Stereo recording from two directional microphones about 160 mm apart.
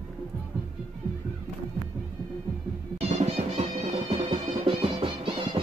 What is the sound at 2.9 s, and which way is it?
Music, 40° right (ahead or behind).